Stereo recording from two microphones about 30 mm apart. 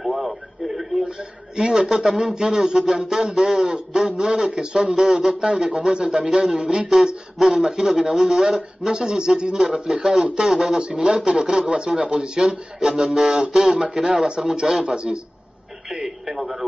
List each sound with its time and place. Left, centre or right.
0.0 s radio: centre
1.6 s speech: right
7.0 s speech: right
16.3 s radio: centre